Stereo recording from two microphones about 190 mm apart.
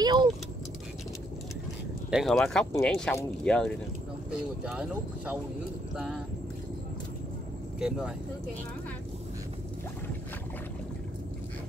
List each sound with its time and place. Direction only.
0.0 s keys jangling: 20° right (ahead or behind)
2.0 s speech: centre (ahead or behind)
4.3 s speech: 5° right (ahead or behind)